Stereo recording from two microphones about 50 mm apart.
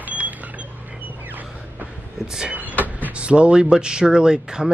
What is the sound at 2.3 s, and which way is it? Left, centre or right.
Vehicle, centre.